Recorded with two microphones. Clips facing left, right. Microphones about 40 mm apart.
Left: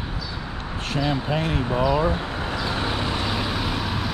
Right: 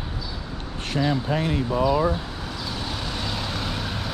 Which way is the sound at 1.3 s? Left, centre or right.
Left.